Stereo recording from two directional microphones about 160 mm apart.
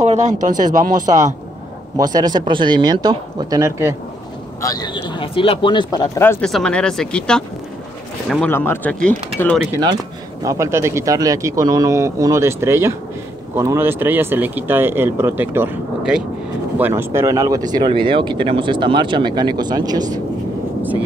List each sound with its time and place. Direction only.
0.0 s speech: 45° right (ahead or behind)
2.0 s speech: 25° right (ahead or behind)
4.6 s speech: 20° left (ahead or behind)
6.4 s speech: 5° left (ahead or behind)
8.5 s speech: 15° left (ahead or behind)
10.4 s speech: 20° right (ahead or behind)